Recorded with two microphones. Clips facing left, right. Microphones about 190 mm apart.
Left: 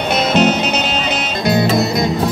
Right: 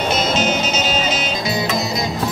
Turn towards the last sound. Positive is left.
turn(degrees=55)  # may be behind; listen again after turning